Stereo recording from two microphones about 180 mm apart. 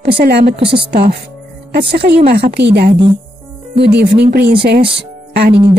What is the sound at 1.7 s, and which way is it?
Speech, 60° right (ahead or behind).